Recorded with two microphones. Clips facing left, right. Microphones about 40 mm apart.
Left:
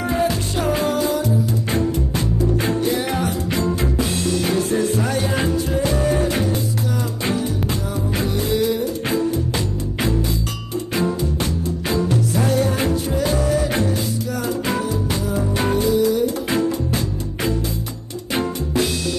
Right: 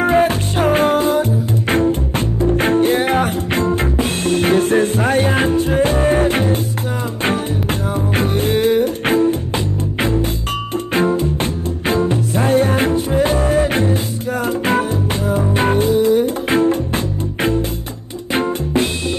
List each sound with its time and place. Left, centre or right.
0.0 s music: right
10.9 s music: right